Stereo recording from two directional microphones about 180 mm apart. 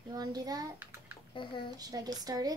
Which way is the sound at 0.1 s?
20° right (ahead or behind).